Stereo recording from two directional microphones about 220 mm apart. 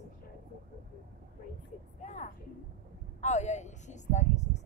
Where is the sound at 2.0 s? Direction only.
35° left (ahead or behind).